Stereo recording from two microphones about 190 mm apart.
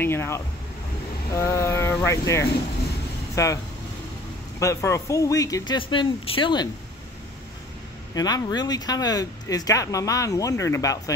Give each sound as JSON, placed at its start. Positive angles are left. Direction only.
{"t": 0.0, "sound": "speech", "side_deg": 15}
{"t": 4.6, "sound": "speech", "side_deg": 15}
{"t": 8.1, "sound": "speech", "side_deg": 20}